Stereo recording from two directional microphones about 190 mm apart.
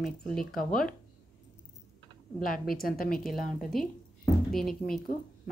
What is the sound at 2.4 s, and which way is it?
Speech, 45° left (ahead or behind).